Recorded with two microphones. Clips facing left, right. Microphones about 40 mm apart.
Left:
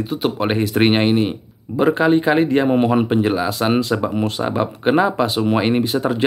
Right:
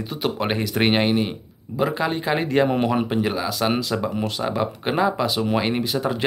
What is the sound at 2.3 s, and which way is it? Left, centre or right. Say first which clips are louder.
Speech: left 7 dB; centre.